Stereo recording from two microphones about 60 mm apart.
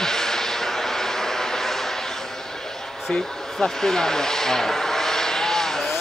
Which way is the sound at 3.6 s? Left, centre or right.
Centre.